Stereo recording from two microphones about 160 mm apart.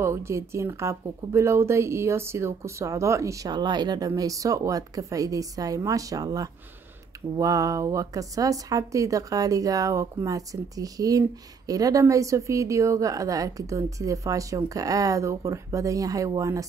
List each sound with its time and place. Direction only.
0.0 s a woman's voice: 15° right (ahead or behind)